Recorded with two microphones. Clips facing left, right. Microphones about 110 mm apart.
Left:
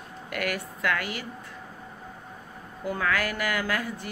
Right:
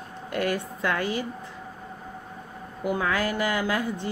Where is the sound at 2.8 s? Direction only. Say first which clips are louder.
Right 2 dB; 20° right (ahead or behind).